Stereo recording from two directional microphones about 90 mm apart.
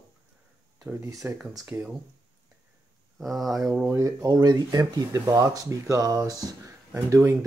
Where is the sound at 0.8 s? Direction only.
25° right (ahead or behind).